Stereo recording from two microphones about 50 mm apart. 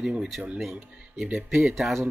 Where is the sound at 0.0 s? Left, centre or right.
Centre.